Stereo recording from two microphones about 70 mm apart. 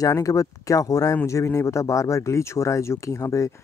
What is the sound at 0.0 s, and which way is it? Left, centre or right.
Speech, left.